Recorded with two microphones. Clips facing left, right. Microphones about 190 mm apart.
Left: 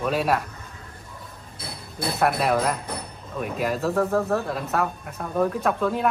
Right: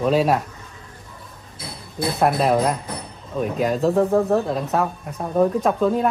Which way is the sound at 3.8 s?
20° right (ahead or behind).